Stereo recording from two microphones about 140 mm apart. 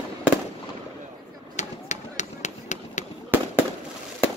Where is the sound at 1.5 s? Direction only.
60° left (ahead or behind).